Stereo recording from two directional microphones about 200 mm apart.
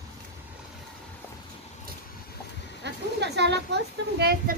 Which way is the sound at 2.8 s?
60° right (ahead or behind).